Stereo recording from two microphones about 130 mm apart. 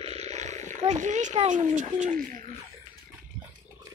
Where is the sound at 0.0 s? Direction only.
55° right (ahead or behind); by 2.4 s 75° right (ahead or behind).